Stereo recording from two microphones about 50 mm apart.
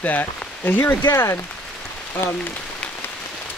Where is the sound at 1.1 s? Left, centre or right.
Left.